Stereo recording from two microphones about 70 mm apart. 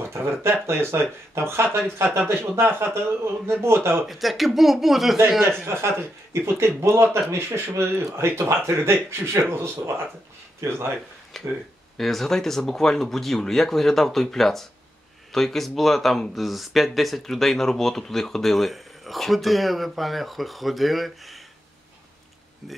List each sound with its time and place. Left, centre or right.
0.0 s speech: right
4.0 s speech: centre
5.6 s speech: right
11.3 s speech: centre
22.6 s speech: centre